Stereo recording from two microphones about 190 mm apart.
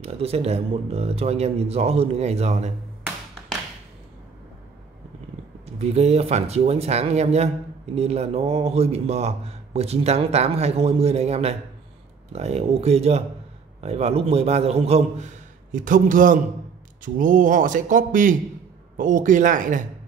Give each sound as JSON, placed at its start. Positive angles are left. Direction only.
{"t": 0.0, "sound": "speech", "side_deg": -30}
{"t": 5.8, "sound": "speech", "side_deg": -35}
{"t": 15.7, "sound": "speech", "side_deg": -45}